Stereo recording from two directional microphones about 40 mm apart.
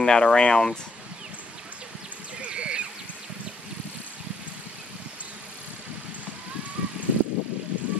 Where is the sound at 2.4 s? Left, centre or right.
Right.